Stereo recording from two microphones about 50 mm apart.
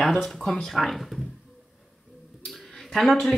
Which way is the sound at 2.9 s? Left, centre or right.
Centre.